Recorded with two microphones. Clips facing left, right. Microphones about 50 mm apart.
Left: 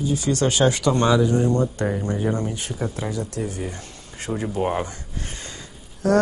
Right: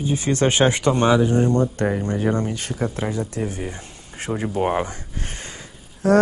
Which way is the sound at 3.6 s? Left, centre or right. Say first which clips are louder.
Right 1 dB; right.